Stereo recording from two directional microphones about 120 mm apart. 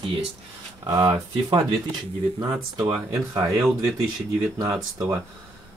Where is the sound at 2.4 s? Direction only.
35° right (ahead or behind).